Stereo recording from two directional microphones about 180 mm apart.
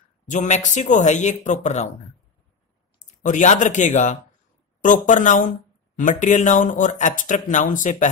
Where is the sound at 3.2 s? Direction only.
45° left (ahead or behind).